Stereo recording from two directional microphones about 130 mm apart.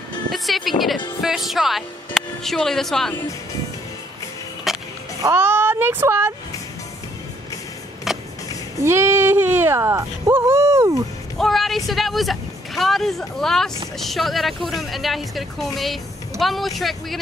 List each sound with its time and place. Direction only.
0.3 s speech: centre (ahead or behind)
4.7 s skateboard: centre (ahead or behind)
5.2 s speech: 15° right (ahead or behind)
8.8 s speech: 20° right (ahead or behind)
11.3 s speech: centre (ahead or behind)